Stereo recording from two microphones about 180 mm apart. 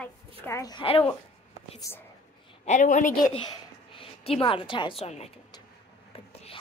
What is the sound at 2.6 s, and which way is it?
Speech, 45° left (ahead or behind).